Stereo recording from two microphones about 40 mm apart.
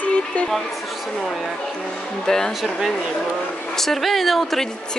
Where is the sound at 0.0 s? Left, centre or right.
Left.